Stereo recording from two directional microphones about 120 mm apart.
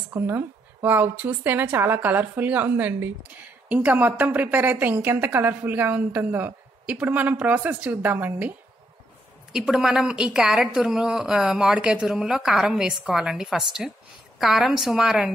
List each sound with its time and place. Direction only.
0.1 s a woman's voice: 20° right (ahead or behind)
9.5 s a woman's voice: 5° right (ahead or behind)